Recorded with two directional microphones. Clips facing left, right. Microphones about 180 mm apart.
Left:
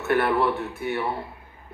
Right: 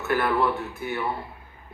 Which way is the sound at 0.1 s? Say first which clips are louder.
Left 2 dB; 25° left (ahead or behind).